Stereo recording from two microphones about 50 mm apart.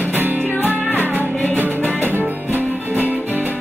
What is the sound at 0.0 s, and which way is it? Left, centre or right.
Music, right.